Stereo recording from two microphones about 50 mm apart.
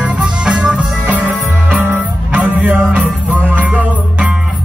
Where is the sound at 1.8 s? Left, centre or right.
Right.